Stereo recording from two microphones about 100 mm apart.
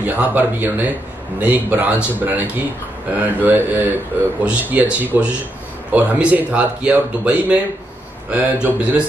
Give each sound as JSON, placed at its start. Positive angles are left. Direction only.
{"t": 0.0, "sound": "speech", "side_deg": -15}